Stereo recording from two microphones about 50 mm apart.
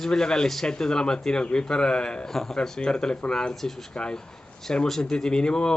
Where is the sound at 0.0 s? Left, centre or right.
Centre.